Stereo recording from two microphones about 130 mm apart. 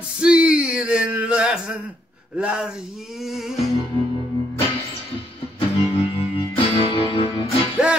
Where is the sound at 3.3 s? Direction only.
Centre (ahead or behind).